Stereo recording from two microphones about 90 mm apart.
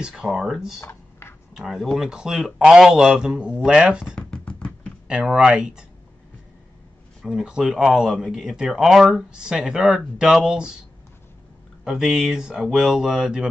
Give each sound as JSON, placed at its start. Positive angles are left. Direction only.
{"t": 0.0, "sound": "speech", "side_deg": -5}
{"t": 0.7, "sound": "computer keyboard", "side_deg": 30}
{"t": 1.5, "sound": "speech", "side_deg": 0}
{"t": 4.1, "sound": "a sound", "side_deg": 15}
{"t": 5.0, "sound": "speech", "side_deg": -10}
{"t": 7.2, "sound": "speech", "side_deg": -5}
{"t": 11.8, "sound": "speech", "side_deg": -5}